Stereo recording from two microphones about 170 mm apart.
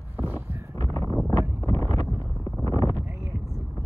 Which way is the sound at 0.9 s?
20° left (ahead or behind).